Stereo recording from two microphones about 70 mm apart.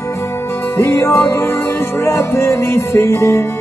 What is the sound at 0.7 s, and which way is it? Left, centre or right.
Music, left.